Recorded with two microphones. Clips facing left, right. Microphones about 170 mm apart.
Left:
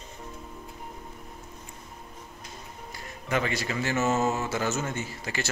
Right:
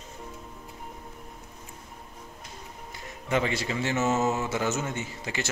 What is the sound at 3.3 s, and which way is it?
Speech, 25° right (ahead or behind).